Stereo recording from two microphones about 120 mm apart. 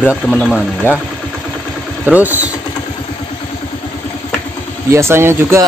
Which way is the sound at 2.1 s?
15° right (ahead or behind).